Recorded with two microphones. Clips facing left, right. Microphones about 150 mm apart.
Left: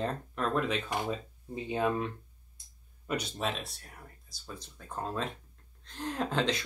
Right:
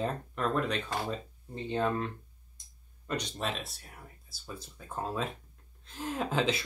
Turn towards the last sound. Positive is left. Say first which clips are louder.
# right 1 dB
turn(degrees=-5)  # may be behind; listen again after turning